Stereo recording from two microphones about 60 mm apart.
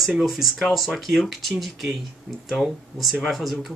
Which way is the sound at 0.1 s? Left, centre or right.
Centre.